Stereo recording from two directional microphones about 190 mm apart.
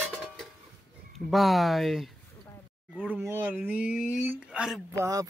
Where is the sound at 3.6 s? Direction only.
10° right (ahead or behind).